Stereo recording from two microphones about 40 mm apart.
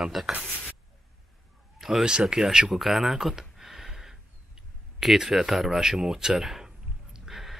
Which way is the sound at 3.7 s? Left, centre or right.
Centre.